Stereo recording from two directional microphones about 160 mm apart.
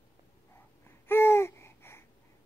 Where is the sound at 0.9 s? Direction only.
15° left (ahead or behind).